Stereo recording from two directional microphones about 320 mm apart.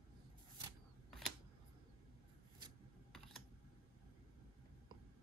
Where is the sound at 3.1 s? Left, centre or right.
Centre.